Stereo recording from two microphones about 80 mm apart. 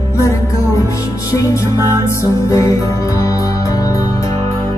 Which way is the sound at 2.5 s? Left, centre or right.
Left.